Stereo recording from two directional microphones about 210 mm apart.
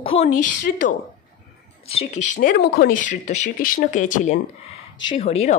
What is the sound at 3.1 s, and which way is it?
Speech, 35° left (ahead or behind).